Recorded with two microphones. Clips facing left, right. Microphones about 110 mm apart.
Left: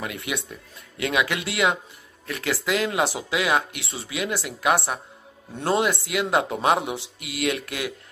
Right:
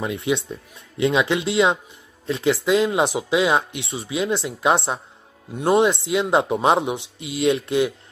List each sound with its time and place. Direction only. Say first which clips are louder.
0.0 s speech: right 7 dB; 25° right (ahead or behind)